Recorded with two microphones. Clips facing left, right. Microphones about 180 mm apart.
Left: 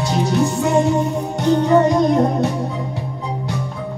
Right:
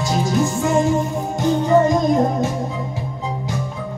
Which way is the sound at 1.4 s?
65° left (ahead or behind).